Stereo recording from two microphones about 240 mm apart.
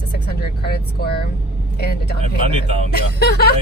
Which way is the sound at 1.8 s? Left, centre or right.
Left.